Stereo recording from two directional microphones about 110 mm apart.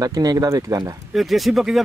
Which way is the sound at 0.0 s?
35° right (ahead or behind).